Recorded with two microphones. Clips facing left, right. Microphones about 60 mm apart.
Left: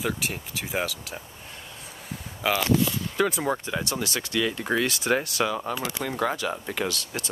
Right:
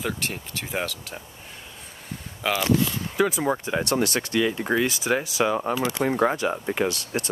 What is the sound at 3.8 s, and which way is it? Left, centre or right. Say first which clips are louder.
Speech: right 6 dB; right.